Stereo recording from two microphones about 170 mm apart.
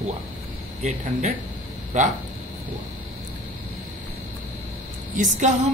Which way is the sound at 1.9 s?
40° right (ahead or behind).